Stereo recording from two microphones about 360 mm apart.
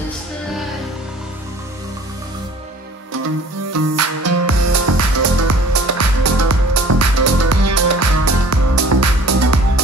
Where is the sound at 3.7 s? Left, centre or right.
Right.